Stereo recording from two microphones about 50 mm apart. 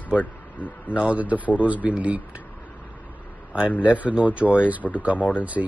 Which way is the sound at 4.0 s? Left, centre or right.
Right.